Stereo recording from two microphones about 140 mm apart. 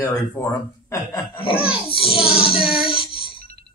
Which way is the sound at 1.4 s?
40° left (ahead or behind).